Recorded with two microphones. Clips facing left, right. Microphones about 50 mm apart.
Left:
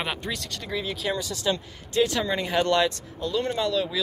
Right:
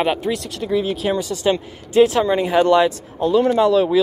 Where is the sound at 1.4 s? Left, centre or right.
Right.